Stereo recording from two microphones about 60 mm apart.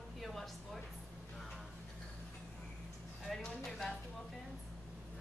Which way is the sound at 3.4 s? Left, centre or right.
Centre.